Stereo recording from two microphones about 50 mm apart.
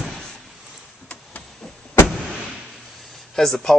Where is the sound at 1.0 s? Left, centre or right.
Left.